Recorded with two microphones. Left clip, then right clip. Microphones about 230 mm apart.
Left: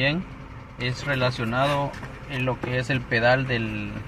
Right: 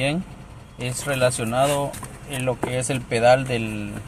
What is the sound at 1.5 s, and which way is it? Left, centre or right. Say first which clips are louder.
Speech: right 3 dB; centre.